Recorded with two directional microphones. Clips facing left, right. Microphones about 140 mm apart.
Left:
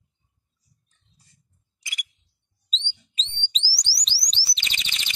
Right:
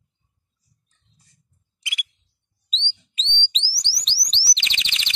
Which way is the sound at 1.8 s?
40° left (ahead or behind).